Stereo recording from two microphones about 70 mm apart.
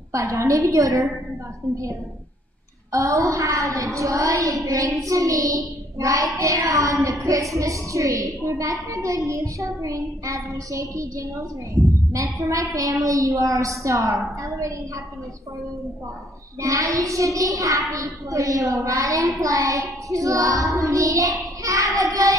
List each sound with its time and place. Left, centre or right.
0.1 s a child's voice: right
16.6 s a child's voice: right